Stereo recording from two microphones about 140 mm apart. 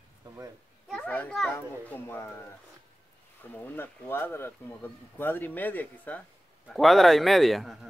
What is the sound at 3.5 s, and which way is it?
Speech, 15° left (ahead or behind).